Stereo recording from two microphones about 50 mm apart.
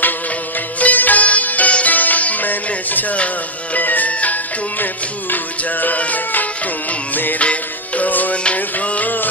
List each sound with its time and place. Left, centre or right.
0.7 s music: left